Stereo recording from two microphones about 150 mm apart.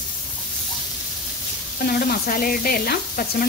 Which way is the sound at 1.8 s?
80° left.